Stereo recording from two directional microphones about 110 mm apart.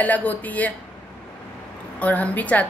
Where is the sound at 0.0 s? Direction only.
15° left (ahead or behind).